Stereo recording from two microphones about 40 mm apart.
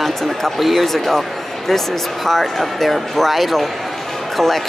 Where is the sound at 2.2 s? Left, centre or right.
Centre.